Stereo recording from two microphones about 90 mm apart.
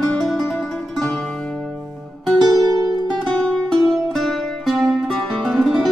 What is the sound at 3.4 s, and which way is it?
Music, 5° left (ahead or behind).